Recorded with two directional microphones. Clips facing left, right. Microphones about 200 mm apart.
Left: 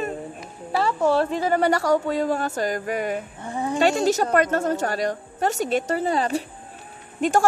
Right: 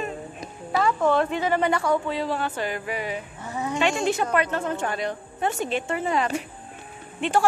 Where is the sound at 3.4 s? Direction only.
30° left (ahead or behind).